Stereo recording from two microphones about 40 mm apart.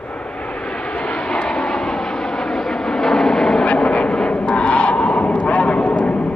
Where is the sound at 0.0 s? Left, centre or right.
Left.